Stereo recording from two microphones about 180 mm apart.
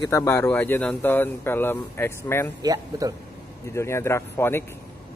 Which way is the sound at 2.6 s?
20° right (ahead or behind).